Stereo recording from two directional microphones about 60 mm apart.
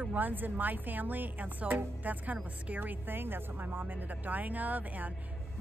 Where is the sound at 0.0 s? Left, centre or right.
Right.